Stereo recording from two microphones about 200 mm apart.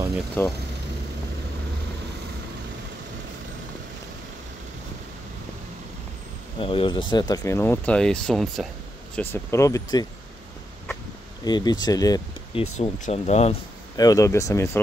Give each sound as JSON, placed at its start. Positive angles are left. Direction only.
{"t": 0.4, "sound": "speech", "side_deg": 10}
{"t": 6.6, "sound": "speech", "side_deg": 25}
{"t": 11.4, "sound": "speech", "side_deg": 20}
{"t": 12.7, "sound": "speech", "side_deg": 35}
{"t": 13.9, "sound": "speech", "side_deg": 15}